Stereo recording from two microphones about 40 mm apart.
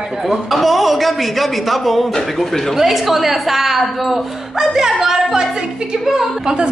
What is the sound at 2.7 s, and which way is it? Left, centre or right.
A woman's voice, centre.